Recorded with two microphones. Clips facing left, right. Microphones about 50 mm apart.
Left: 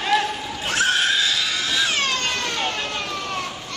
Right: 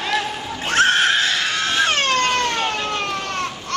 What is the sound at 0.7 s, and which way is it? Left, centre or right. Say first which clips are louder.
Screaming: right 4 dB; right.